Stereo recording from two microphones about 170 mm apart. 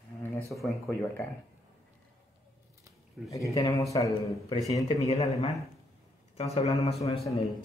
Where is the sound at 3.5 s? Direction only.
20° left (ahead or behind).